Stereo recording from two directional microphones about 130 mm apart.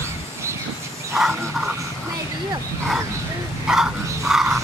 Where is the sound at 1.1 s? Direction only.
Centre (ahead or behind).